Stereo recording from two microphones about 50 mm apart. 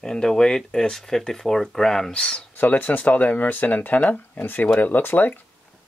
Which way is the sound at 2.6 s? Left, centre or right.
Left.